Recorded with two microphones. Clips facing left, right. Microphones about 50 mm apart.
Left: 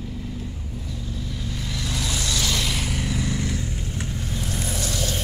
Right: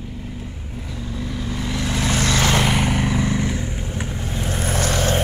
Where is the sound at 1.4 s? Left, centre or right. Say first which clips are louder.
Right 6 dB; right.